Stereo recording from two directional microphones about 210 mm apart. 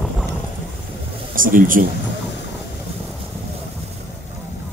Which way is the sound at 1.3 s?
40° right (ahead or behind).